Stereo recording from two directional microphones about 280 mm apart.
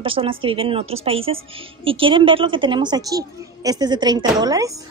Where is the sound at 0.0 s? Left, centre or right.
Centre.